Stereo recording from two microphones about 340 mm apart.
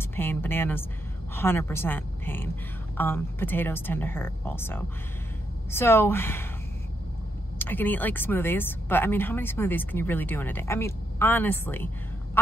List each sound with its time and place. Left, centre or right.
0.1 s speech: centre
7.5 s speech: centre